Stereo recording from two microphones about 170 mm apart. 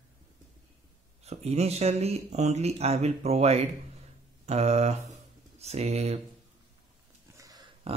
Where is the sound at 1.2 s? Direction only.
40° right (ahead or behind).